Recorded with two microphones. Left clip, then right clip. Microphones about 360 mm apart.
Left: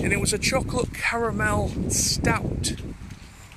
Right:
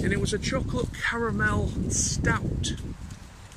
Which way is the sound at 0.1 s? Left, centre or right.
Centre.